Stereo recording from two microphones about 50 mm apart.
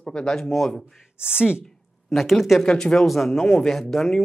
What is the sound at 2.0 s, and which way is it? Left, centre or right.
Speech, centre.